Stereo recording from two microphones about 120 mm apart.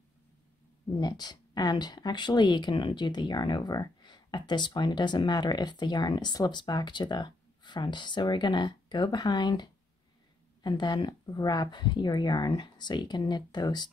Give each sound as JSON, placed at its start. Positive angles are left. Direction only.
{"t": 0.9, "sound": "speech", "side_deg": 35}